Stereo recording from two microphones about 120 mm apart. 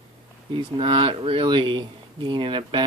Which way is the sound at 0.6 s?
45° right (ahead or behind).